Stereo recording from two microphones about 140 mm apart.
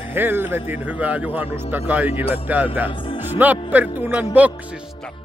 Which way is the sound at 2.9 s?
40° left (ahead or behind).